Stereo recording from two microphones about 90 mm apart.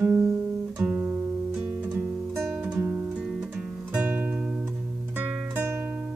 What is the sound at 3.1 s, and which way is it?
Music, 10° right (ahead or behind).